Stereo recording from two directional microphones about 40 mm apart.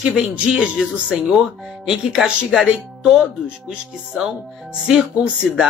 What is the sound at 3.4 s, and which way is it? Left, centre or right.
Speech, right.